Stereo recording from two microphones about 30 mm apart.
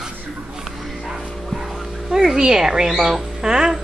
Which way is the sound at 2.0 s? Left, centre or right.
Centre.